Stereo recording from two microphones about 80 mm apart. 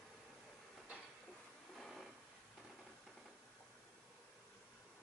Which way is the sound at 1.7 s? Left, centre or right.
Centre.